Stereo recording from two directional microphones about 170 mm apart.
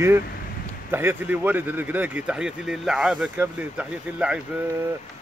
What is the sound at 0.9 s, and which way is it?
Speech, 10° right (ahead or behind).